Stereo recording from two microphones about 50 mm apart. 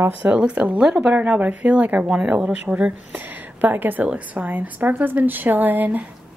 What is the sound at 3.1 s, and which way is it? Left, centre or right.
A woman's voice, right.